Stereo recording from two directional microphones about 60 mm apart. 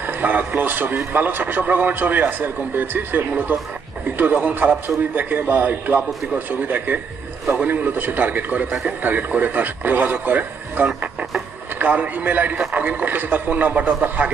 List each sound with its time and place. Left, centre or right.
0.0 s speech: right